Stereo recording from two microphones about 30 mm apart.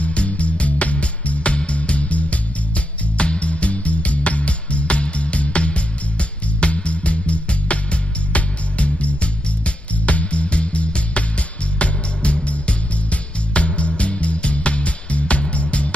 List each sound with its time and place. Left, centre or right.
0.0 s music: left